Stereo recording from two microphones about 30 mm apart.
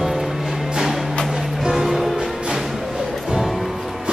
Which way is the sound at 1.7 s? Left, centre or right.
Centre.